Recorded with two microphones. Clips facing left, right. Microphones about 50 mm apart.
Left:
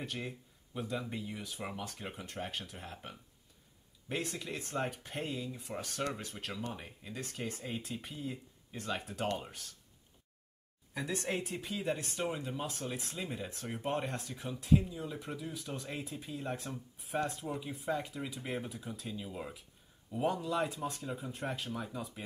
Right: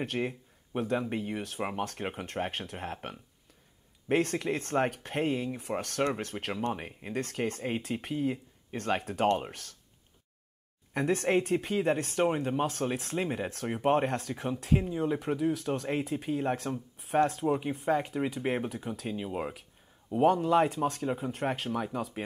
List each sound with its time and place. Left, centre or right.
0.0 s speech: right
10.9 s speech: right